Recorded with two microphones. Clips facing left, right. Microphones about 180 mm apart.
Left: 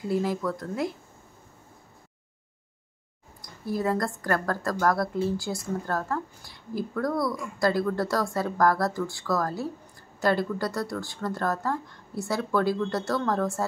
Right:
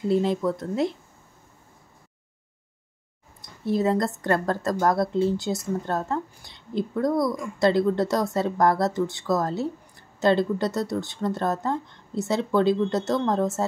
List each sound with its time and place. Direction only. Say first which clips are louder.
0.1 s a woman's voice: right 4 dB; 25° right (ahead or behind)
3.4 s a woman's voice: right 4 dB; 25° right (ahead or behind)